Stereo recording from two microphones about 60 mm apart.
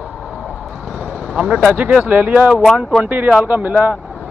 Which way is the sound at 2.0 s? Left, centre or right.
Right.